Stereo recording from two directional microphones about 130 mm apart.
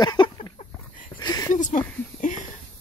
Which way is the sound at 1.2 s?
30° left (ahead or behind).